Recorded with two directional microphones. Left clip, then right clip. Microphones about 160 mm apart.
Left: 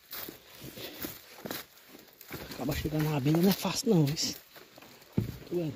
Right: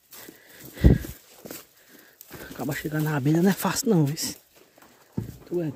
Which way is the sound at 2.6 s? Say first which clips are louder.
Right 4 dB; 30° right (ahead or behind).